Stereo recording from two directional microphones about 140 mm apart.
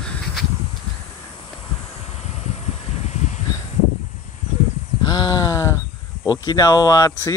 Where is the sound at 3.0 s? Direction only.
55° left (ahead or behind).